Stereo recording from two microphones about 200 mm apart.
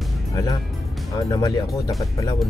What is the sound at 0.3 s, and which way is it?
Speech, 20° left (ahead or behind).